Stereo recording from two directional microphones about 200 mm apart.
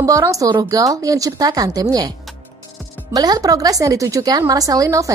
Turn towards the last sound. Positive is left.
turn(degrees=-15)  # may be behind; listen again after turning